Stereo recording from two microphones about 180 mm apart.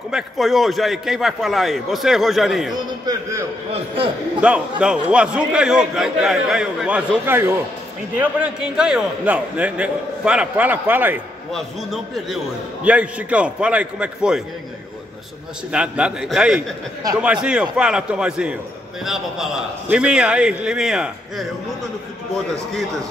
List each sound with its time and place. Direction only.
0.1 s a man's voice: centre (ahead or behind)
3.1 s a man's voice: 15° right (ahead or behind)
3.7 s a man's voice: 30° right (ahead or behind)
4.4 s a man's voice: 5° right (ahead or behind)
11.5 s a man's voice: centre (ahead or behind)
15.7 s a man's voice: 5° right (ahead or behind)